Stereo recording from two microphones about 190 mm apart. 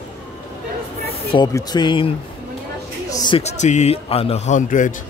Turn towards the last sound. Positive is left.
turn(degrees=40)  # may be behind; listen again after turning